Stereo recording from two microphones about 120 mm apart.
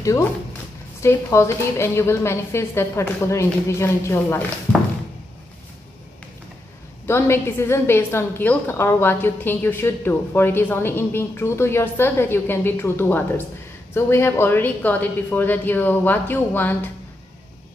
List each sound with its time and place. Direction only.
0.0 s a woman's voice: 25° left (ahead or behind)
7.1 s a woman's voice: 20° left (ahead or behind)